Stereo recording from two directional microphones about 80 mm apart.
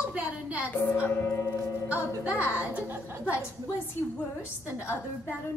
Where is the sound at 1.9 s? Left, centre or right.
Centre.